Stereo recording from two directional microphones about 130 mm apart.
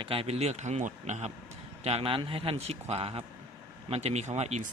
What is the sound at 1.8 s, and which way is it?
A man's voice, 50° right (ahead or behind).